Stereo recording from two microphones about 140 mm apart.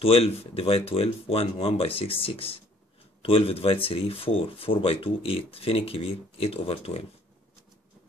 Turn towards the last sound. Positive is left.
turn(degrees=45)  # may be behind; listen again after turning